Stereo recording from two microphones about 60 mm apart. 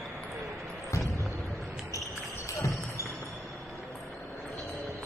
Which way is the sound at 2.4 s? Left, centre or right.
Left.